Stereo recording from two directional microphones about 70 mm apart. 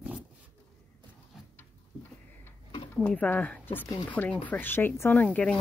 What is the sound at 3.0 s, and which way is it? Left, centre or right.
Speech, centre.